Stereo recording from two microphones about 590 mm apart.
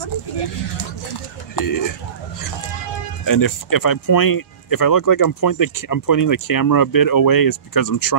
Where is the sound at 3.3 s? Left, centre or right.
Left.